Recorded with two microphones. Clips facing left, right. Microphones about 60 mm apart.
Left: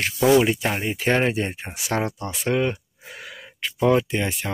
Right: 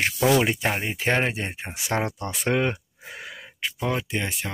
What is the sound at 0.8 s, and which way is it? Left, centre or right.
Speech, centre.